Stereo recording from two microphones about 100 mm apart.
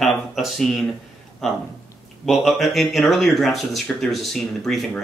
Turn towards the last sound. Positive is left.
turn(degrees=0)  # may be behind; listen again after turning